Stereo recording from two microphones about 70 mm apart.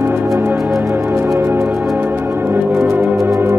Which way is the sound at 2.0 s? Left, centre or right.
Right.